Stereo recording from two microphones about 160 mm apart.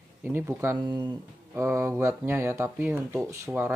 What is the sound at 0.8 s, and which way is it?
Speech, 25° right (ahead or behind).